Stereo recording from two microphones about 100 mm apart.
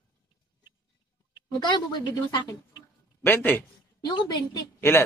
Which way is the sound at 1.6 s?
50° left (ahead or behind).